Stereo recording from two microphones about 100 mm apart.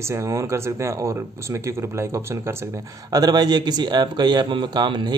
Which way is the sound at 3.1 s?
40° right (ahead or behind).